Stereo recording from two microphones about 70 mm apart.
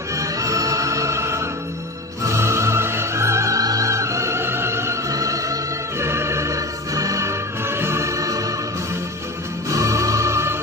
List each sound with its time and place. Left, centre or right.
0.1 s music: right
5.1 s music: right
9.7 s music: right